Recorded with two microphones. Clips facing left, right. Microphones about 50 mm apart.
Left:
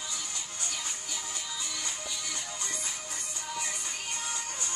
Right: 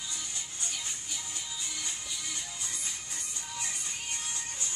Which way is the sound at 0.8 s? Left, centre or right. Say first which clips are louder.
Left 2 dB; left.